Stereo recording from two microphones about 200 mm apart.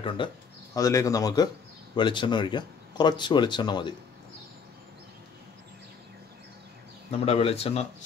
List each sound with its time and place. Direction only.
0.2 s speech: 25° left (ahead or behind)
7.1 s a man's voice: 30° left (ahead or behind)